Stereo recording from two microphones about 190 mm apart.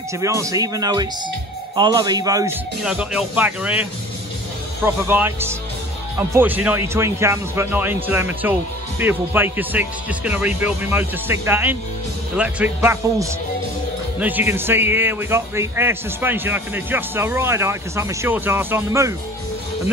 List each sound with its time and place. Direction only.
0.2 s a man's voice: 15° right (ahead or behind)
2.8 s speech: 5° right (ahead or behind)
4.8 s a man's voice: 10° right (ahead or behind)